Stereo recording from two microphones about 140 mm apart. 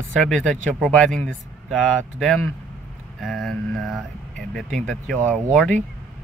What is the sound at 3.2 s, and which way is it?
Speech, centre (ahead or behind).